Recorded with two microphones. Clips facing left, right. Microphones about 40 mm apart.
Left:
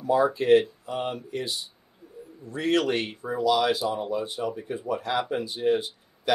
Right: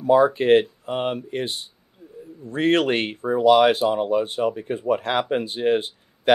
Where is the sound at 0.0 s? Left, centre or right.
Right.